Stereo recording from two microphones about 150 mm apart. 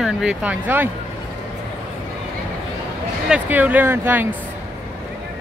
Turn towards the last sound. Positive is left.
turn(degrees=-15)  # may be behind; listen again after turning